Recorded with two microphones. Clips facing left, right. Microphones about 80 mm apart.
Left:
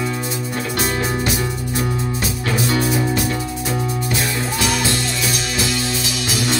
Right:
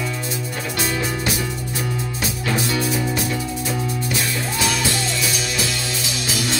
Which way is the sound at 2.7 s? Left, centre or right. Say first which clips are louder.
Left 3 dB; left.